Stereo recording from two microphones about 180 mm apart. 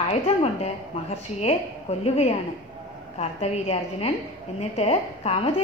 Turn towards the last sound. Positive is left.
turn(degrees=35)  # may be behind; listen again after turning